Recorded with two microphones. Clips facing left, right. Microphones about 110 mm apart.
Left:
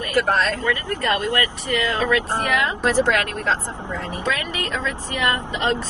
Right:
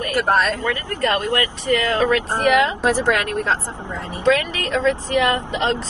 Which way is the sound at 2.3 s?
15° right (ahead or behind).